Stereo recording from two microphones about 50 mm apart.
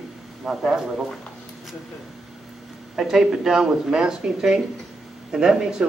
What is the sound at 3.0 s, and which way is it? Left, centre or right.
Speech, centre.